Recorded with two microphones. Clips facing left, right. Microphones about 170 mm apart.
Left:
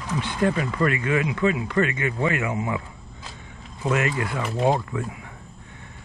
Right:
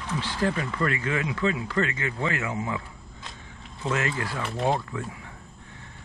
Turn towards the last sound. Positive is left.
turn(degrees=15)  # may be behind; listen again after turning